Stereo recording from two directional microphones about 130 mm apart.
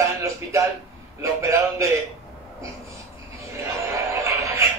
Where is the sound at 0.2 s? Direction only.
20° right (ahead or behind).